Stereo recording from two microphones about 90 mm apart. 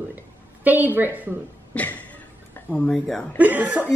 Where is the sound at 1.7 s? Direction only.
20° left (ahead or behind).